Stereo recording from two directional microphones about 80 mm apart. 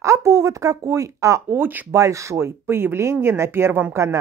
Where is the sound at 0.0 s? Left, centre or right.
Right.